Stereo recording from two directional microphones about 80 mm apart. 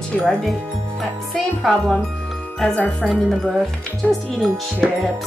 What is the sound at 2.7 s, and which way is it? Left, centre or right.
Speech, centre.